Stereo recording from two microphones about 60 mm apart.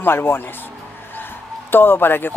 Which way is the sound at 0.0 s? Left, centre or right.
Left.